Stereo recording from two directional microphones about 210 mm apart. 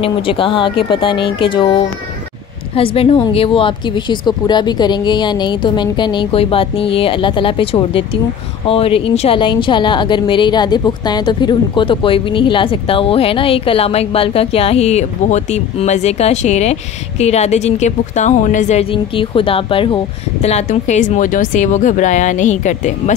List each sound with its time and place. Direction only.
0.0 s speech: 25° left (ahead or behind)
2.7 s a woman's voice: 25° left (ahead or behind)